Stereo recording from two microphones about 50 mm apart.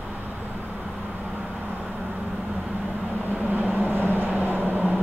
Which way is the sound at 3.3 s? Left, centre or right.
Right.